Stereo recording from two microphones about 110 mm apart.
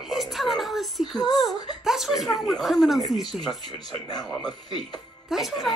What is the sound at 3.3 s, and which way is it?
Speech, 40° left (ahead or behind).